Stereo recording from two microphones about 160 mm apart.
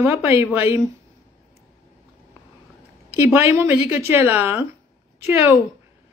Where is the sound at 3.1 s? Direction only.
15° right (ahead or behind).